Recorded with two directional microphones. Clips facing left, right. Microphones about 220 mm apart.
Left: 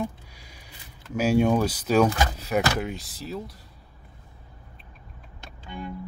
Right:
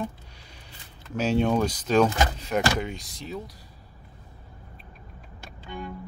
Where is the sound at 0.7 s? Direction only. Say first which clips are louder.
Left 2 dB; 10° left (ahead or behind).